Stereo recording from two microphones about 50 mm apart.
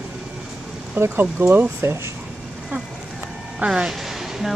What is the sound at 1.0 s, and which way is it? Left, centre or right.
Speech, right.